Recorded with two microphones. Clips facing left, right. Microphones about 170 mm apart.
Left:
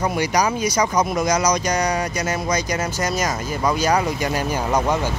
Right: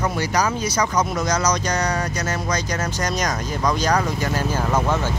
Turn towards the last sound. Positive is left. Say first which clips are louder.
# left 1 dB
turn(degrees=10)  # may be behind; listen again after turning